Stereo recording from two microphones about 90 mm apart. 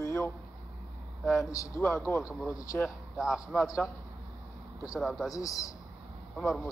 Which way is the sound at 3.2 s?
5° right (ahead or behind).